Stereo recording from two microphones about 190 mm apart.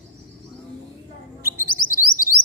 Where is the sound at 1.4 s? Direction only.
15° right (ahead or behind).